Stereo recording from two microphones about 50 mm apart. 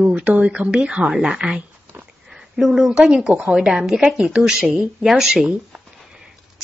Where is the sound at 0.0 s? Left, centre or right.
Right; by 5.5 s centre.